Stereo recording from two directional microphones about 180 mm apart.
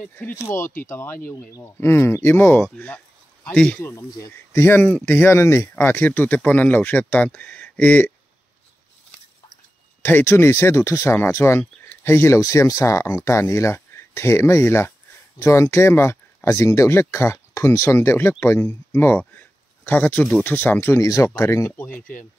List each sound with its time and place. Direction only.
0.0 s speech: 10° left (ahead or behind)
3.9 s speech: 15° left (ahead or behind)
10.0 s speech: 15° left (ahead or behind)